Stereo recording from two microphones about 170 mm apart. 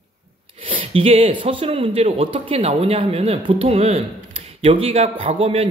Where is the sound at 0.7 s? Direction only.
35° right (ahead or behind).